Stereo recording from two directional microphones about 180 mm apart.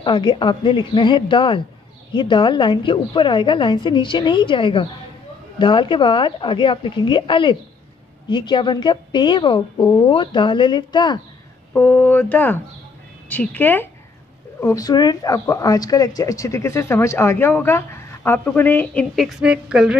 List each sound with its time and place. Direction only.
0.0 s a woman's voice: 25° left (ahead or behind)
11.7 s speech: 10° left (ahead or behind); by 20.0 s 5° right (ahead or behind)